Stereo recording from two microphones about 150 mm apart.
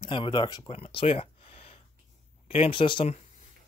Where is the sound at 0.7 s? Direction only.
40° left (ahead or behind).